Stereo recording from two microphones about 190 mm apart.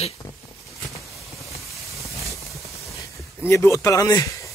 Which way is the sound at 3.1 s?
15° left (ahead or behind).